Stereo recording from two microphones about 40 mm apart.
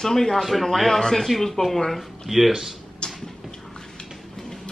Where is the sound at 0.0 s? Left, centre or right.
Centre.